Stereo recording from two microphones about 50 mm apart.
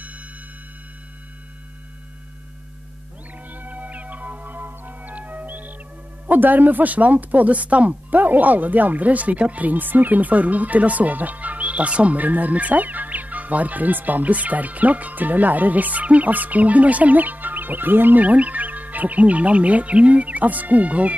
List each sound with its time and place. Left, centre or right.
3.4 s music: right
6.2 s speech: right